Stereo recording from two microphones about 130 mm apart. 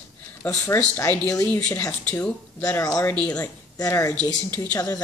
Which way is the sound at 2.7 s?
25° left (ahead or behind).